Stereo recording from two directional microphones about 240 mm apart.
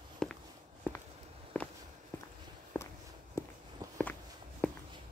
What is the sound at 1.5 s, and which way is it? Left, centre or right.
Walk, centre.